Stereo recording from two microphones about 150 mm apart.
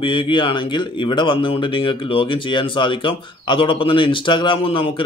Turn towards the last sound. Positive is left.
turn(degrees=35)  # may be behind; listen again after turning